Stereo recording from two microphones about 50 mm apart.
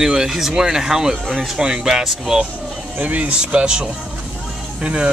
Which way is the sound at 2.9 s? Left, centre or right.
Right.